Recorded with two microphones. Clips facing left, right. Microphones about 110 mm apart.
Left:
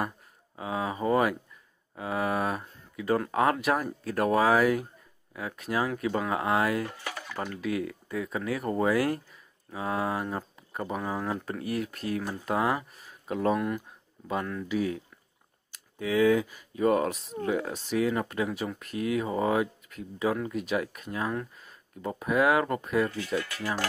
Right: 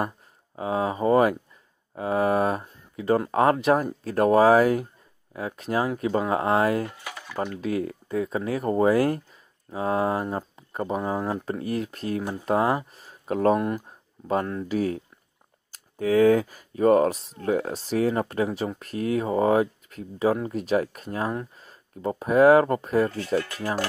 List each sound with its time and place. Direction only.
0.6 s speech: 35° right (ahead or behind)
6.9 s a sound: 5° right (ahead or behind)
7.3 s speech: 30° right (ahead or behind)
13.3 s speech: 45° right (ahead or behind)